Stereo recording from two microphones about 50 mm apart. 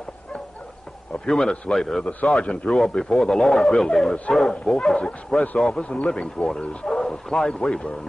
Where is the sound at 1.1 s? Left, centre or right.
Centre.